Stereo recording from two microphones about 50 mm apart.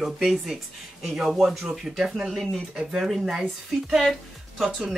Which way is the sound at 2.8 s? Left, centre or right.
Centre.